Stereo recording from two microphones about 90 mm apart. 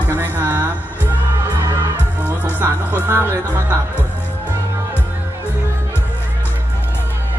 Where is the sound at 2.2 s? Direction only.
20° right (ahead or behind).